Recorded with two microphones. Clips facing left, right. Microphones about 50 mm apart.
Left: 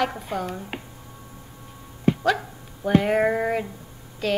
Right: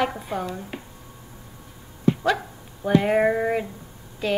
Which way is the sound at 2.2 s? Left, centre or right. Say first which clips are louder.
Even; centre.